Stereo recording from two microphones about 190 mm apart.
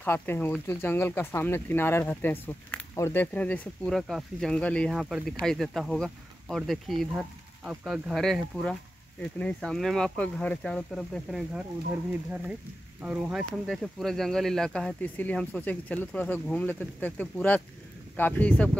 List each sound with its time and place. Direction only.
0.0 s speech: 10° left (ahead or behind)
13.0 s speech: 5° right (ahead or behind)